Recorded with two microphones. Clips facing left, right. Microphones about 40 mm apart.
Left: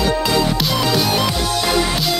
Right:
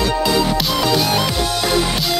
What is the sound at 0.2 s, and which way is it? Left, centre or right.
Music, centre.